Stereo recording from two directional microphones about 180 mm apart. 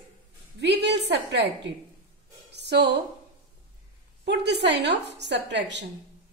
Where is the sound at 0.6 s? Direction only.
70° right (ahead or behind).